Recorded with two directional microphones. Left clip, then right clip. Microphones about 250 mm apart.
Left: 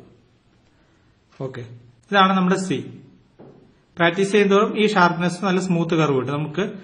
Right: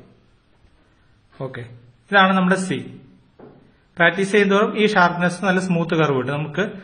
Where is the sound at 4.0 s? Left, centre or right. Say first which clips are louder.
Right 1 dB; centre.